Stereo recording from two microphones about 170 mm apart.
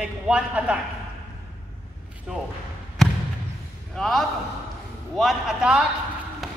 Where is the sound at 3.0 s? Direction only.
Centre (ahead or behind).